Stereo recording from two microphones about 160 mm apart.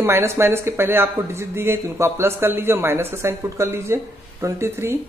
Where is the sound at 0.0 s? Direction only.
15° right (ahead or behind).